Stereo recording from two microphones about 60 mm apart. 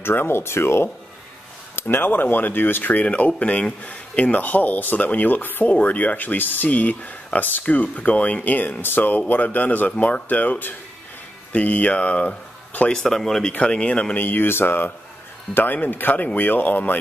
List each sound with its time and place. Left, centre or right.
0.0 s speech: left
12.9 s speech: centre
13.5 s speech: centre
14.1 s speech: left